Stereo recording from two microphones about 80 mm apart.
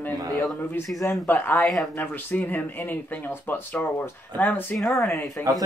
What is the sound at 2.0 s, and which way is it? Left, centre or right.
Speech, left.